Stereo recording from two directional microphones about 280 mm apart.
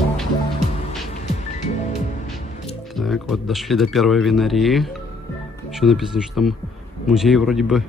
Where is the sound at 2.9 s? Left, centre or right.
Centre.